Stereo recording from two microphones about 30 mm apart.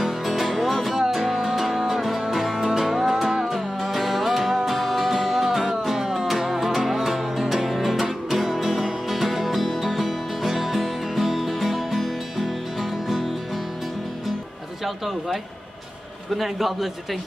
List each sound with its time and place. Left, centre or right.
0.3 s music: centre
0.9 s music: centre
16.3 s a man's voice: centre